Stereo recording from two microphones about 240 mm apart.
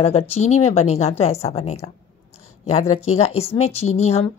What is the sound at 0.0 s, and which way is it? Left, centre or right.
Speech, left.